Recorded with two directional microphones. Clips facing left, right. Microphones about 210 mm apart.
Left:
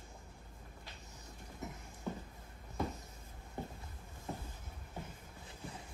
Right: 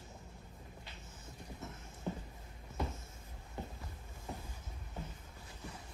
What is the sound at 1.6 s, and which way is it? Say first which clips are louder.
Music: left 4 dB; 15° left (ahead or behind).